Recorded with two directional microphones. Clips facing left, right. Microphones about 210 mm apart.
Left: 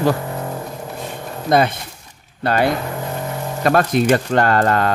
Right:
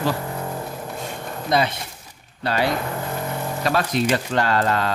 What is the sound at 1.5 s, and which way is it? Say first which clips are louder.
Speech: left 5 dB; 50° left (ahead or behind).